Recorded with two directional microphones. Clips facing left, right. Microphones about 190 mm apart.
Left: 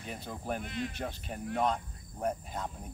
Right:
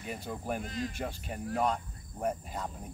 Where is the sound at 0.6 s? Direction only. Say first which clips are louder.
Right 1 dB; 40° right (ahead or behind).